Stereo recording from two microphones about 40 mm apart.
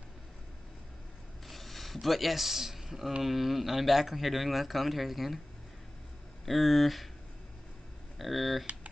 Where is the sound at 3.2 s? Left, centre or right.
Centre.